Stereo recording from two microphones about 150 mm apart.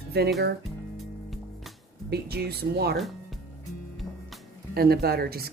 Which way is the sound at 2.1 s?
90° right.